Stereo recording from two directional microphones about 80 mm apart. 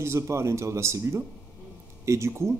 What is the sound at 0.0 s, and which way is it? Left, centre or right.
Speech, right.